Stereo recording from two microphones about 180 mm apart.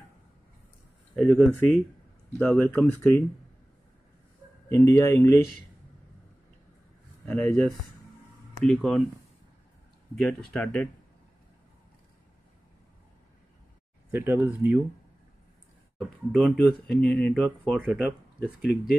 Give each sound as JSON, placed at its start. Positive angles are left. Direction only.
{"t": 1.1, "sound": "speech", "side_deg": 5}
{"t": 4.6, "sound": "speech", "side_deg": 15}
{"t": 7.2, "sound": "speech", "side_deg": 5}
{"t": 10.1, "sound": "speech", "side_deg": 5}
{"t": 14.1, "sound": "speech", "side_deg": -10}
{"t": 16.0, "sound": "speech", "side_deg": 0}